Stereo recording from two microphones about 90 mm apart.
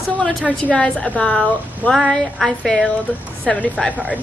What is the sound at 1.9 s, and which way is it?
A woman's voice, centre (ahead or behind).